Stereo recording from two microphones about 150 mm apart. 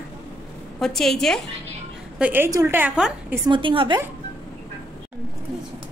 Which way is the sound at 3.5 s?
35° right (ahead or behind).